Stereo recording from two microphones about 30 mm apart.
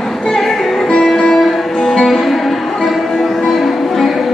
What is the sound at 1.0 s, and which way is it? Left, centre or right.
Music, centre.